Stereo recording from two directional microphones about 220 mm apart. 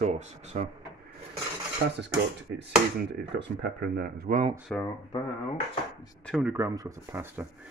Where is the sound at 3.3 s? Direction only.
45° right (ahead or behind).